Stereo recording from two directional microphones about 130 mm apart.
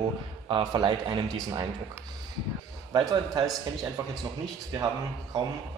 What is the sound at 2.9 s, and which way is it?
Speech, 30° right (ahead or behind).